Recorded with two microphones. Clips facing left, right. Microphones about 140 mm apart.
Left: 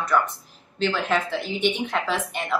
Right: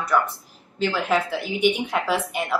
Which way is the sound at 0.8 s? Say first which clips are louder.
Right 1 dB; 10° right (ahead or behind).